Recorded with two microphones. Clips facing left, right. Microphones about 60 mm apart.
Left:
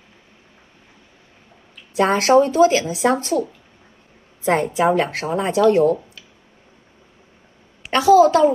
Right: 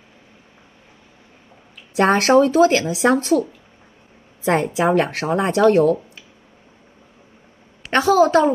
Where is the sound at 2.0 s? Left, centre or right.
Right.